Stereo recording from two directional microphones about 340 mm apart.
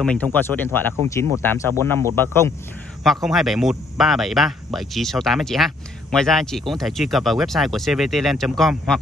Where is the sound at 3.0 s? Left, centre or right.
Centre.